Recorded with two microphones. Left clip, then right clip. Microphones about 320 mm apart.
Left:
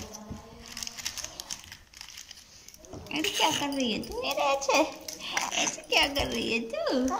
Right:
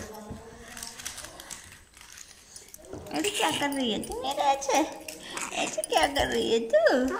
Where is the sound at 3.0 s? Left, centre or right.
Centre.